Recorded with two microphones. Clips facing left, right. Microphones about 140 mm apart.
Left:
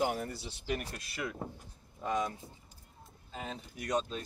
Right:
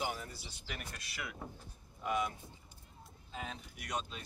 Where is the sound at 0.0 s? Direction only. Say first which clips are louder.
Left 7 dB; 55° left (ahead or behind).